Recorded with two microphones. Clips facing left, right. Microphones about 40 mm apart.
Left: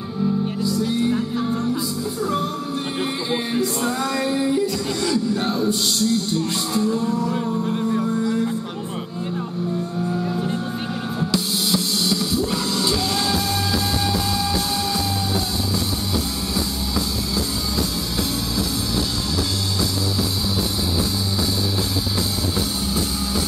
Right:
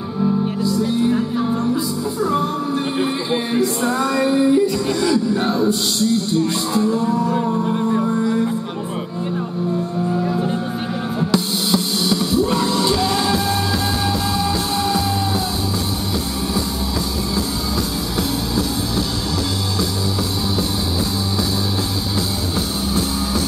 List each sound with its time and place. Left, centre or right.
0.6 s music: centre
3.0 s speech: centre
3.6 s music: centre
5.9 s speech: centre
7.8 s music: centre
10.1 s music: centre
14.4 s music: centre